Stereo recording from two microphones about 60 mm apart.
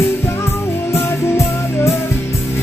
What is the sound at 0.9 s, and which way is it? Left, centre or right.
Music, left.